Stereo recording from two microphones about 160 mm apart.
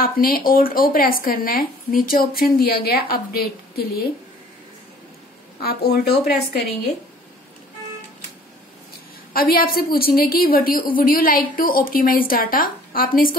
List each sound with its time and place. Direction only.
0.0 s a woman's voice: 65° left (ahead or behind)
5.6 s speech: 80° left
9.3 s a woman's voice: 65° left (ahead or behind)